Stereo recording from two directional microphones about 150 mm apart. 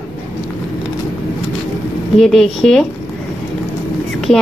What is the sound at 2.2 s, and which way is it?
Speech, centre (ahead or behind).